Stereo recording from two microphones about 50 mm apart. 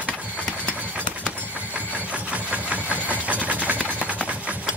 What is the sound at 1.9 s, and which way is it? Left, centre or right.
Engine, right.